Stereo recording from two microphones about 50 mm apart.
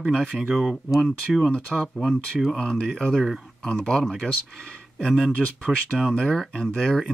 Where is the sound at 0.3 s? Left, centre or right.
Centre.